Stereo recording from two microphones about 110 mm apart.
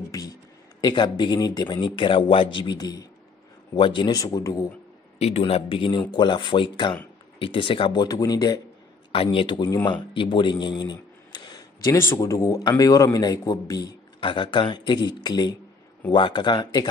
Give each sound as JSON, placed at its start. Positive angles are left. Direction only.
{"t": 0.7, "sound": "speech", "side_deg": 40}
{"t": 3.7, "sound": "a man's voice", "side_deg": 50}
{"t": 5.2, "sound": "speech", "side_deg": 70}
{"t": 9.1, "sound": "a man's voice", "side_deg": 55}